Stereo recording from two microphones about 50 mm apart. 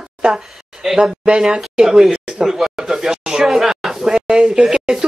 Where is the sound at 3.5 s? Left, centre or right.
Centre.